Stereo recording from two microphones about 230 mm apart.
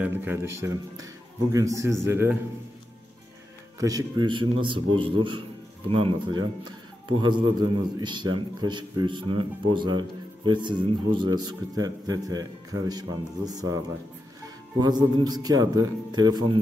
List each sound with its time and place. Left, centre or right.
0.0 s speech: centre
3.8 s speech: centre
14.8 s speech: centre